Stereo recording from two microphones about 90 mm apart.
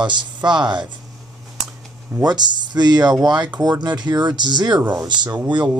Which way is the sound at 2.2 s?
55° right (ahead or behind).